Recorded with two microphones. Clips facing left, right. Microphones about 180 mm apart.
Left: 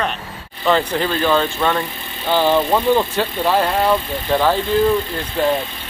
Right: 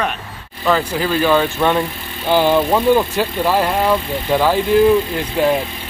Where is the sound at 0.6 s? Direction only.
5° right (ahead or behind).